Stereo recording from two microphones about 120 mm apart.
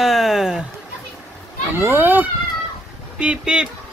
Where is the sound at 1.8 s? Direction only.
20° right (ahead or behind).